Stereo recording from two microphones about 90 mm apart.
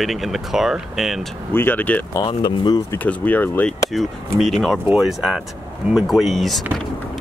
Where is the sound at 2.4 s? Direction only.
55° left (ahead or behind).